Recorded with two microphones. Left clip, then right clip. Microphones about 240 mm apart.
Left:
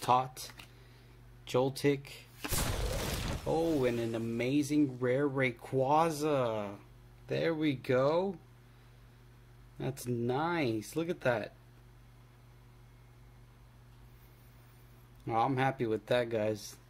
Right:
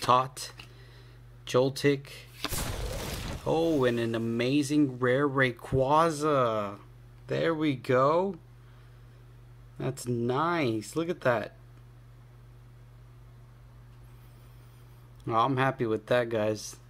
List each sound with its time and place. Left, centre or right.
0.0 s speech: centre
1.4 s a sound: centre
3.8 s speech: centre
9.8 s speech: centre
15.2 s speech: centre